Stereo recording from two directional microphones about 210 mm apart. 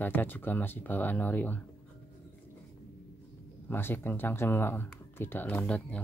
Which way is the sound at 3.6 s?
10° left (ahead or behind).